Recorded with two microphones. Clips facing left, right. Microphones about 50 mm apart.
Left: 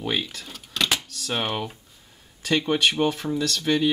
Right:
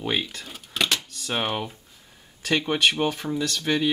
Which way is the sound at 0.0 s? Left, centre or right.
Centre.